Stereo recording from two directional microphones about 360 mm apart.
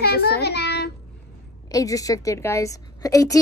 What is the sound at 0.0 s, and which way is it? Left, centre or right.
Child singing, left.